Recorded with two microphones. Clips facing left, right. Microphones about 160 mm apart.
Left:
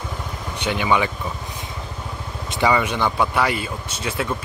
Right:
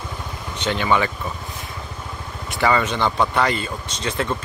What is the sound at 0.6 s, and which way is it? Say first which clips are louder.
Speech: even; 10° left (ahead or behind).